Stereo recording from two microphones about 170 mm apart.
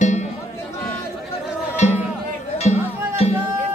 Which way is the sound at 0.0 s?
45° left (ahead or behind).